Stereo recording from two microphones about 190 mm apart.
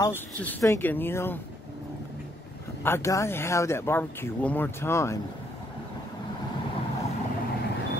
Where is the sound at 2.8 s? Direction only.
15° left (ahead or behind).